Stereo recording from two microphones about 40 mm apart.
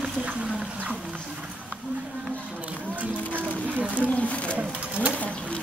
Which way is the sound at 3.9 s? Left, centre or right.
Left.